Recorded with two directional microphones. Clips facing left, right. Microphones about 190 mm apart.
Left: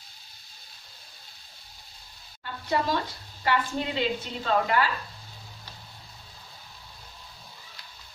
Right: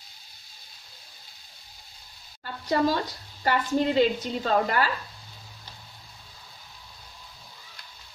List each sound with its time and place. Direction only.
2.4 s frying: 40° right (ahead or behind)
3.4 s a woman's voice: 40° right (ahead or behind)